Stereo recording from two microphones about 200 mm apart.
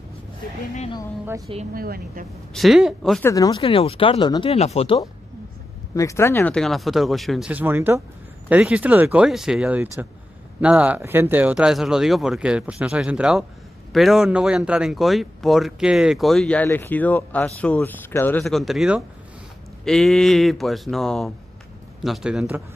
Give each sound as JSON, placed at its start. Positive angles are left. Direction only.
{"t": 1.7, "sound": "a woman's voice", "side_deg": -45}
{"t": 2.5, "sound": "speech", "side_deg": 0}
{"t": 3.3, "sound": "speech", "side_deg": 20}
{"t": 5.9, "sound": "speech", "side_deg": 15}